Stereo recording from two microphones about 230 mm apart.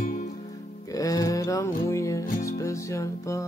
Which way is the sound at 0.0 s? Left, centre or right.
Left.